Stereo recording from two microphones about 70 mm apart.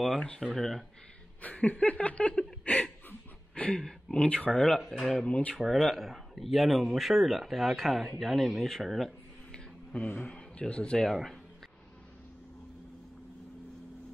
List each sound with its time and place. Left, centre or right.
0.2 s speech: centre
1.4 s speech: left
4.6 s speech: centre
5.2 s speech: centre
5.5 s speech: centre
9.5 s a sound: centre
10.2 s speech: centre